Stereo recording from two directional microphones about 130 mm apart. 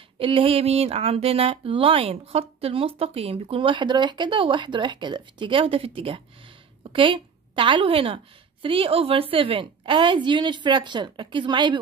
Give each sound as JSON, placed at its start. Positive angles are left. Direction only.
{"t": 0.2, "sound": "a woman's voice", "side_deg": -45}